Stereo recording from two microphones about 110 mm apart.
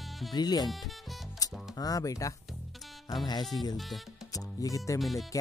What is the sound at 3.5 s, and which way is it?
Speech, 40° left (ahead or behind).